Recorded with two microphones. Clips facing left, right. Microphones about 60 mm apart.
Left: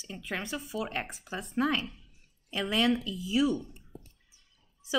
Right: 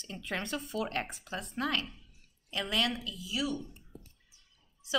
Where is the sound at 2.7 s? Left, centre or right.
Centre.